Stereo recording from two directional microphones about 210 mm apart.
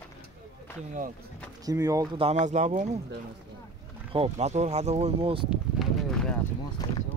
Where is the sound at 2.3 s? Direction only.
35° right (ahead or behind).